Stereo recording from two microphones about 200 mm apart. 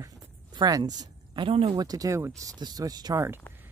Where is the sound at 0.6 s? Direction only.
20° right (ahead or behind).